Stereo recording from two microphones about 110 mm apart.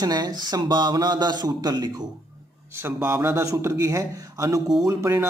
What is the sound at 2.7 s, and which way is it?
A man's voice, 20° right (ahead or behind).